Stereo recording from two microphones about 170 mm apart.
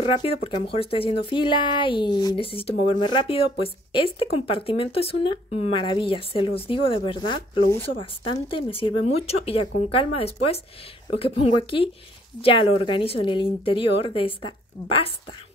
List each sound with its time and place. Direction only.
0.0 s speech: 30° left (ahead or behind)